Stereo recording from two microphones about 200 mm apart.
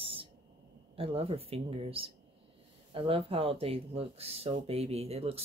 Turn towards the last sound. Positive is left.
turn(degrees=-30)  # may be behind; listen again after turning